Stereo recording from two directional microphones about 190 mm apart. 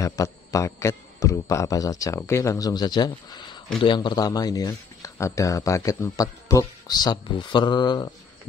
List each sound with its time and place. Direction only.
0.0 s a man's voice: 15° left (ahead or behind)